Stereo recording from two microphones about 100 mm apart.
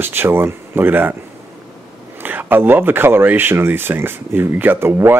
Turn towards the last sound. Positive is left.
turn(degrees=-25)  # may be behind; listen again after turning